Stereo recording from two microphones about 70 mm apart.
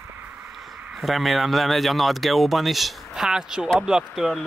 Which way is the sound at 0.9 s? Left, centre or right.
Centre.